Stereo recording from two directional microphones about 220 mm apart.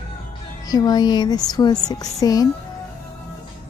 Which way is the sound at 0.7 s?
20° left (ahead or behind).